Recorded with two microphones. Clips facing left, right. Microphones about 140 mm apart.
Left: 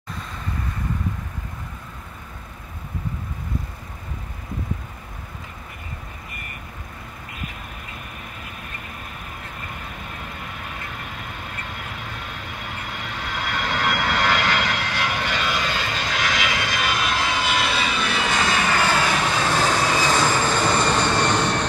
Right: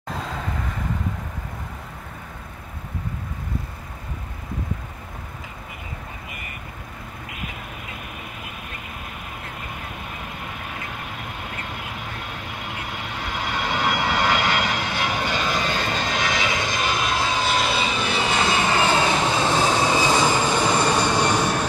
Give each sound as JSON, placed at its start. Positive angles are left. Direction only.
{"t": 0.1, "sound": "vehicle", "side_deg": -90}
{"t": 13.5, "sound": "vehicle", "side_deg": -15}
{"t": 15.8, "sound": "vehicle", "side_deg": -40}
{"t": 16.2, "sound": "vehicle", "side_deg": -20}
{"t": 17.4, "sound": "vehicle", "side_deg": -35}